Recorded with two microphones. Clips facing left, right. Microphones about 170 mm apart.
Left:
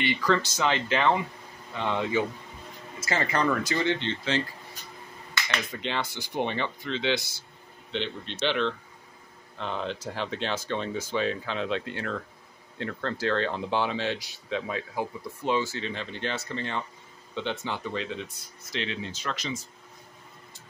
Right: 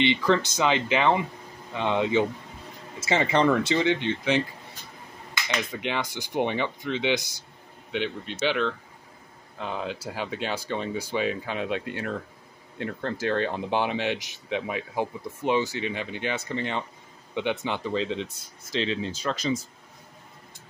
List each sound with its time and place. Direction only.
0.0 s speech: 20° right (ahead or behind)
3.8 s speech: 15° right (ahead or behind)
5.8 s speech: 15° right (ahead or behind); by 19.5 s 35° right (ahead or behind)